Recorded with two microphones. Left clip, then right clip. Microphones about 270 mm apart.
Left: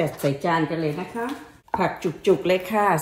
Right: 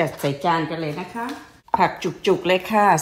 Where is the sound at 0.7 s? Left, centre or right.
Centre.